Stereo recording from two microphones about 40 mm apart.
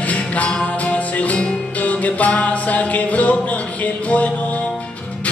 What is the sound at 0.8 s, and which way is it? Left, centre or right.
Music, left.